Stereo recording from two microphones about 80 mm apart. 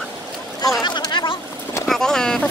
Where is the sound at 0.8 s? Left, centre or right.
Left.